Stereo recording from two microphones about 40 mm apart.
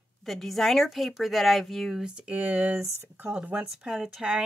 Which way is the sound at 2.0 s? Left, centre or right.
Right.